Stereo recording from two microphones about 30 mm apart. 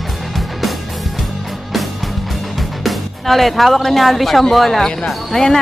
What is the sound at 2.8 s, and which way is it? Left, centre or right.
Speech, centre.